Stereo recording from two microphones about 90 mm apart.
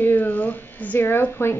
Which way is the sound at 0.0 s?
20° left (ahead or behind).